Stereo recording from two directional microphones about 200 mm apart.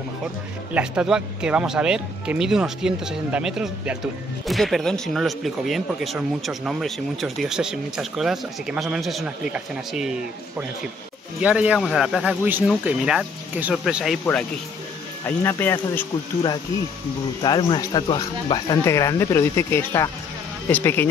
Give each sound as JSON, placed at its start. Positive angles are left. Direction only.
{"t": 0.7, "sound": "speech", "side_deg": -5}
{"t": 11.4, "sound": "speech", "side_deg": -5}
{"t": 15.2, "sound": "speech", "side_deg": 10}
{"t": 17.4, "sound": "speech", "side_deg": 20}